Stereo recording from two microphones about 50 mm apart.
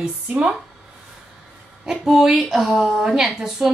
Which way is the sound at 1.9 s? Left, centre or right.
Centre.